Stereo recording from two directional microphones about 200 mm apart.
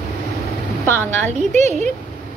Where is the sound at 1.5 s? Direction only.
35° right (ahead or behind).